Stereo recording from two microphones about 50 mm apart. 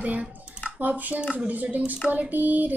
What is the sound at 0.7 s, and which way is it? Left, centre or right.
Child singing, right.